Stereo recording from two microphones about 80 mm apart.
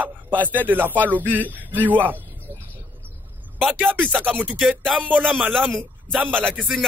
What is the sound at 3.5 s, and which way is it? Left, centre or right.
Speech, right.